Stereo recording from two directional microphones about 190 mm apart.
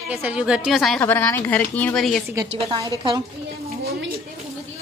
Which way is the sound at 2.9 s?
25° right (ahead or behind).